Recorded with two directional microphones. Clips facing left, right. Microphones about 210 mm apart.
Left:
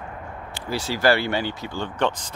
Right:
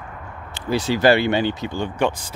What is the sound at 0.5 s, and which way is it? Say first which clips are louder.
Speech: right 7 dB; 20° right (ahead or behind).